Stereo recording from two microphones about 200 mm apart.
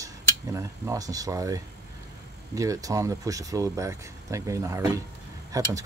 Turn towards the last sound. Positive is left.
turn(degrees=-15)  # may be behind; listen again after turning